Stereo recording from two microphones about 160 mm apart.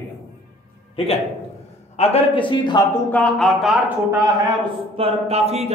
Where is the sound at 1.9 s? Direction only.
40° left (ahead or behind).